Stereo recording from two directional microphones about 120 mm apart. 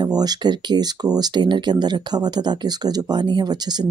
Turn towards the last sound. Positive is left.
turn(degrees=-35)  # may be behind; listen again after turning